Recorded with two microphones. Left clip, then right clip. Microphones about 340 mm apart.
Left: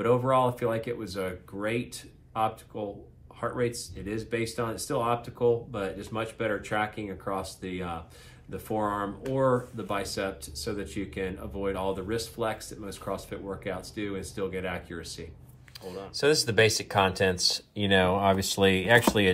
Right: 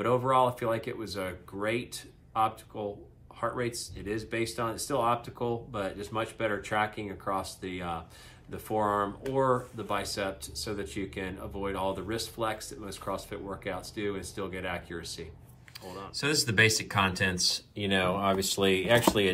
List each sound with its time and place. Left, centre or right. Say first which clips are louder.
0.0 s speech: left 1 dB; centre
16.3 s speech: left 2 dB; centre